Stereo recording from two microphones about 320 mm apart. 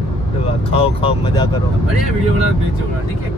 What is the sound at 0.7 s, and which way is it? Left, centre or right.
Speech, centre.